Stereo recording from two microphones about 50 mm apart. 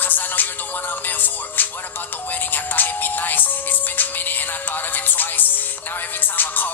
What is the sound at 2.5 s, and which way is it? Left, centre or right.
Music, left.